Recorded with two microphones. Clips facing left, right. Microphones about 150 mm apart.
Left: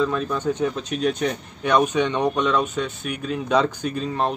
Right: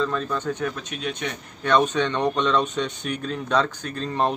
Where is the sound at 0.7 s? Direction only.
40° left (ahead or behind).